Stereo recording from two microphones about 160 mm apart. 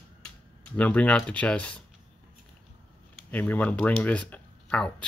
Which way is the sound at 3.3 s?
10° left (ahead or behind).